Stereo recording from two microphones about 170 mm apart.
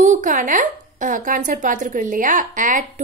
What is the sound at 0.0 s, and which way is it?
A woman's voice, 50° right (ahead or behind).